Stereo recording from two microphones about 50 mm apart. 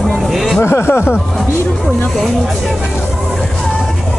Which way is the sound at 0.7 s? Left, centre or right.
Left.